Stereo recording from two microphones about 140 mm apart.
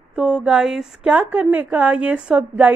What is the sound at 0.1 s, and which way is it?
A woman's voice, 10° right (ahead or behind).